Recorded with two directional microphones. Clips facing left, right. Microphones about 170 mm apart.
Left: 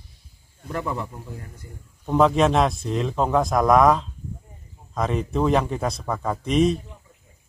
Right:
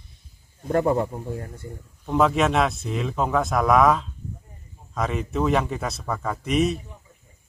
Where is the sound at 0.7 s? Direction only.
50° right (ahead or behind).